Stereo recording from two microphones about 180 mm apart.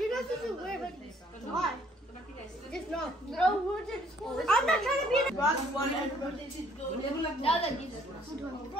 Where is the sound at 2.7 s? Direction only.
5° left (ahead or behind).